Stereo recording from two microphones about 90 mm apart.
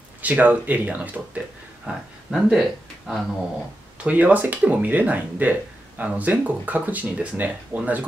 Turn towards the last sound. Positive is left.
turn(degrees=-15)  # may be behind; listen again after turning